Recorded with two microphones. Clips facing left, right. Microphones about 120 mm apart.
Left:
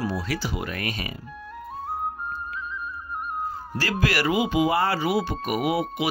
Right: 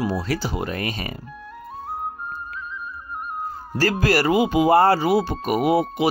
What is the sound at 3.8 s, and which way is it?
Speech, 40° right (ahead or behind).